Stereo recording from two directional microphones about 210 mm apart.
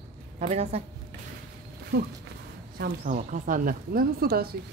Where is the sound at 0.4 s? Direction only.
30° right (ahead or behind).